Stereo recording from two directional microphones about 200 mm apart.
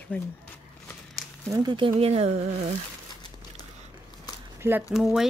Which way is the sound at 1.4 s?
20° right (ahead or behind).